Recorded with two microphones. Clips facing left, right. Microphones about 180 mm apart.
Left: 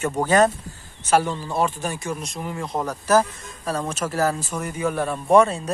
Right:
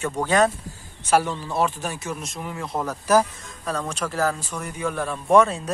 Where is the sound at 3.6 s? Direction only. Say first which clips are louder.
Left 2 dB; 5° left (ahead or behind).